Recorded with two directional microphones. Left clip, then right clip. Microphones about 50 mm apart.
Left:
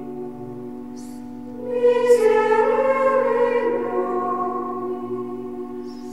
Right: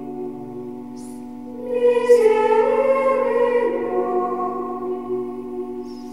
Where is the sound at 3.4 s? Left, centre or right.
Centre.